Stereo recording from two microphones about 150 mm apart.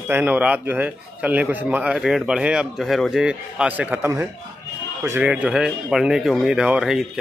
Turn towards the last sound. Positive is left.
turn(degrees=-5)  # may be behind; listen again after turning